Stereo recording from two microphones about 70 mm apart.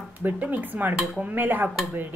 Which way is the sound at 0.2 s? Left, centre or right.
Right.